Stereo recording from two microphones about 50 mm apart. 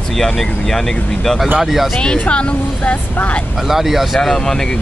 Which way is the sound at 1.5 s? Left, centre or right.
Centre.